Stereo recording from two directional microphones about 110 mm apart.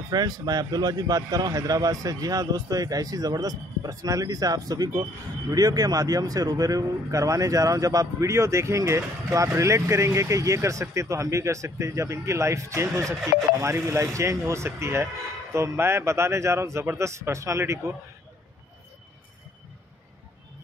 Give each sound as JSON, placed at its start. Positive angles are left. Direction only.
{"t": 0.1, "sound": "a man's voice", "side_deg": -35}